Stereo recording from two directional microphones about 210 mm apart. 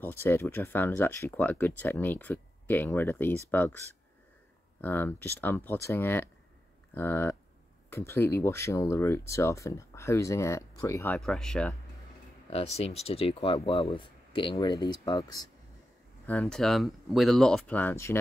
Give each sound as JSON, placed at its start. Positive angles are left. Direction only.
{"t": 0.0, "sound": "speech", "side_deg": 10}
{"t": 4.8, "sound": "speech", "side_deg": 10}
{"t": 11.1, "sound": "speech", "side_deg": 0}
{"t": 12.4, "sound": "speech", "side_deg": 30}
{"t": 16.3, "sound": "speech", "side_deg": 5}